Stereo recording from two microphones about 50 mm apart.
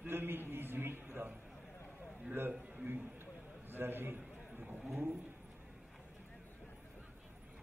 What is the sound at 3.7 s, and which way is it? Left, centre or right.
Speech, right.